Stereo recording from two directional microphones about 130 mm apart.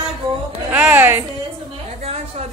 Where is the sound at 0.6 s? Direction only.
10° right (ahead or behind).